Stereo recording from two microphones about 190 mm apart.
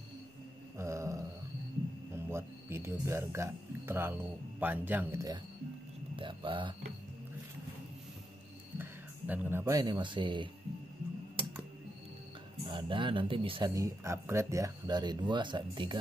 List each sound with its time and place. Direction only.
0.7 s mantra: 15° right (ahead or behind)
2.1 s speech: 15° right (ahead or behind)
6.1 s speech: 25° right (ahead or behind)
8.7 s speech: 10° right (ahead or behind); by 10.5 s 25° right (ahead or behind)
12.6 s speech: 25° right (ahead or behind)
13.7 s speech: 15° right (ahead or behind)